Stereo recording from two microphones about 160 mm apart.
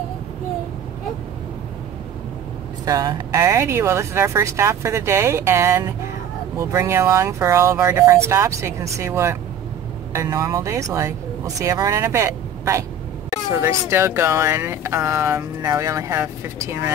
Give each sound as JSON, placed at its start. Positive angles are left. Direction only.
{"t": 2.8, "sound": "speech", "side_deg": -25}